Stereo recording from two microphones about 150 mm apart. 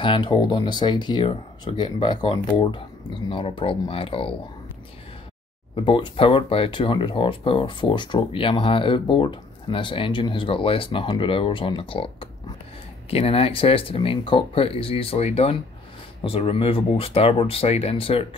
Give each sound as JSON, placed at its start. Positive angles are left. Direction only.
{"t": 0.0, "sound": "speech", "side_deg": 30}
{"t": 5.8, "sound": "speech", "side_deg": 35}